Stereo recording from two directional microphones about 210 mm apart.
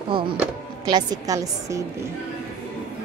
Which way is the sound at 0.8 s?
20° right (ahead or behind).